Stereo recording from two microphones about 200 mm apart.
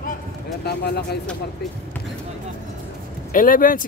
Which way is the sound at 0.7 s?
55° left (ahead or behind).